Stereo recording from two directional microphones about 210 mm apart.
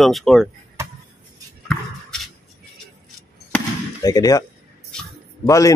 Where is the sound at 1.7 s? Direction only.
5° left (ahead or behind).